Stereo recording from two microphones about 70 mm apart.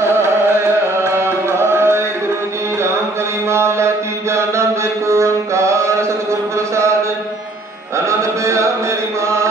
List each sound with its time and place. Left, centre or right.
1.6 s music: right
3.4 s mantra: right
8.1 s music: right